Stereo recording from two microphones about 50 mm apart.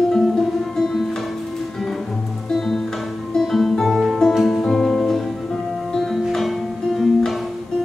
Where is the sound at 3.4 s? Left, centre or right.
Centre.